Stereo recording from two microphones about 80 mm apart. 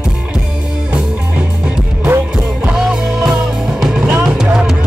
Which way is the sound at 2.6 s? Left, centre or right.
Centre.